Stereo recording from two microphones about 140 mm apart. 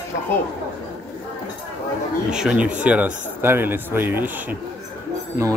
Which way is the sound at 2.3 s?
5° right (ahead or behind).